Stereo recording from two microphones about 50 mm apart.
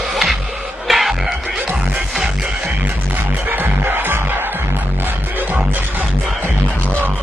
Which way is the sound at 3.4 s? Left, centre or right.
Right.